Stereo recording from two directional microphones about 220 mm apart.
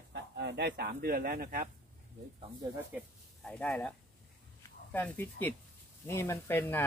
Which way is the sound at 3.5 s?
5° left (ahead or behind).